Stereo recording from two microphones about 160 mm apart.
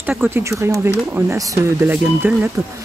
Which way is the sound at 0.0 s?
10° right (ahead or behind).